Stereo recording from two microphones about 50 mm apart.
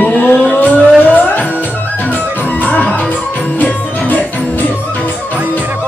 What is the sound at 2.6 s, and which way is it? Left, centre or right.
Music, left.